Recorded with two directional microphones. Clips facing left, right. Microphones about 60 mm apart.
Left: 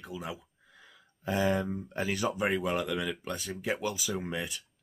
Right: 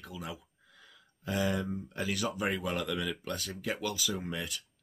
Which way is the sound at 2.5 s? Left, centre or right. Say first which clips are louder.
Left 3 dB; centre.